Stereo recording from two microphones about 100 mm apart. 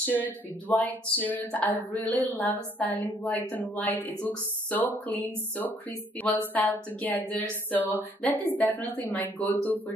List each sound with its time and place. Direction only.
0.0 s a woman's voice: 15° left (ahead or behind)